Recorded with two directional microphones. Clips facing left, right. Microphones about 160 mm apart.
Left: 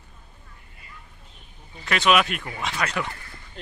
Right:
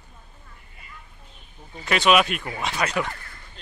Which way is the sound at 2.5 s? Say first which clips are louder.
Right 2 dB; 20° right (ahead or behind).